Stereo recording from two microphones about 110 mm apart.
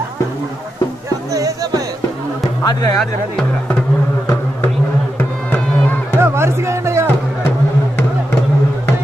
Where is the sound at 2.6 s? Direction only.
35° left (ahead or behind).